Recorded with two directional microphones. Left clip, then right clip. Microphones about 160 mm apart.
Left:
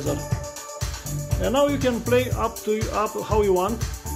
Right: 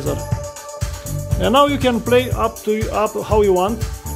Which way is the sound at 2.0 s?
25° right (ahead or behind).